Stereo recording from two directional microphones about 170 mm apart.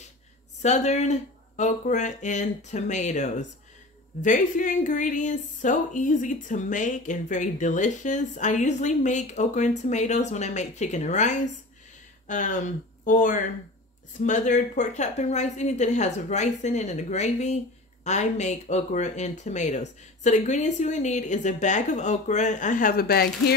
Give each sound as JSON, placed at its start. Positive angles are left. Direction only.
{"t": 0.6, "sound": "a woman's voice", "side_deg": 40}